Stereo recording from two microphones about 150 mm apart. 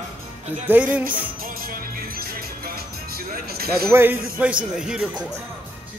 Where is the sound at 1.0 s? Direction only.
70° right (ahead or behind); by 3.8 s 90° right.